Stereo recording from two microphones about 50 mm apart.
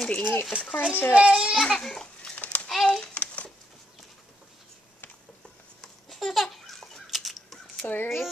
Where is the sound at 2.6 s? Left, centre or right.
Centre.